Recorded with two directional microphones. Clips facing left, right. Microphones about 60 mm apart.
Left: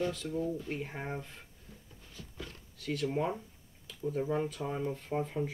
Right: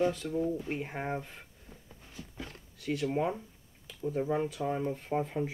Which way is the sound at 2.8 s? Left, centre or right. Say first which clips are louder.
Right 2 dB; centre.